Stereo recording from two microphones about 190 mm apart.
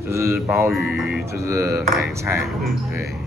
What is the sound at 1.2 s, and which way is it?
A man's voice, 15° right (ahead or behind).